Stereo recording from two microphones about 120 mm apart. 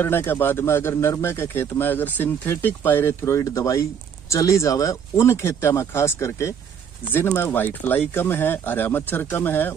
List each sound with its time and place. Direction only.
0.0 s speech: 20° left (ahead or behind)